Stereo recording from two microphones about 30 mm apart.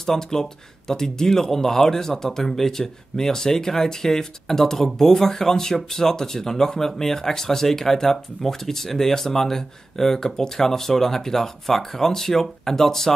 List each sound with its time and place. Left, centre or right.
0.0 s speech: centre